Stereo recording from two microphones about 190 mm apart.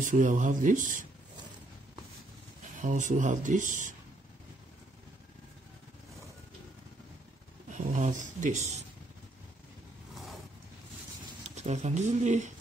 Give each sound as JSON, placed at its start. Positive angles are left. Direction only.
{"t": 0.0, "sound": "speech", "side_deg": -45}
{"t": 2.8, "sound": "speech", "side_deg": -40}
{"t": 7.7, "sound": "speech", "side_deg": -40}
{"t": 11.4, "sound": "speech", "side_deg": -35}